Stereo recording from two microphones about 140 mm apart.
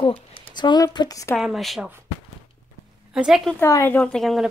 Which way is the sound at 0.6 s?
35° left (ahead or behind).